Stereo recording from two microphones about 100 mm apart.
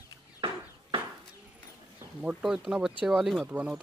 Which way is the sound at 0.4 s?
65° right (ahead or behind).